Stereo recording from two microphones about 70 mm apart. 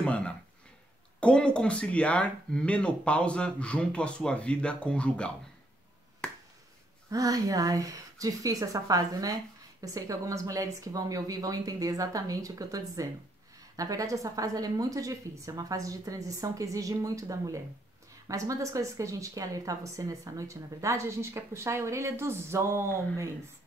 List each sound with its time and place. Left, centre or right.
0.0 s a sound: centre
1.2 s speech: centre
7.1 s a woman's voice: right